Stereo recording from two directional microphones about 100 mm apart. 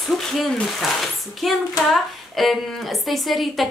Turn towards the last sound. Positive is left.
turn(degrees=0)  # may be behind; listen again after turning